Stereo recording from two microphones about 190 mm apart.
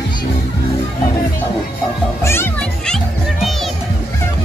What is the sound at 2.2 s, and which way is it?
Music, 10° left (ahead or behind).